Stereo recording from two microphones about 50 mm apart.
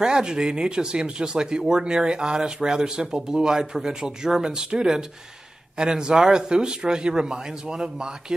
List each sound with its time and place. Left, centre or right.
0.0 s speech: centre